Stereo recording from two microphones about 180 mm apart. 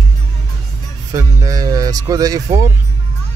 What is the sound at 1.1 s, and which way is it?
Speech, 20° right (ahead or behind).